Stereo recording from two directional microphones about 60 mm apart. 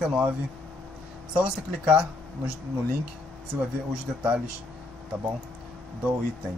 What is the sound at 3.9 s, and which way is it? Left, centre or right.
Speech, centre.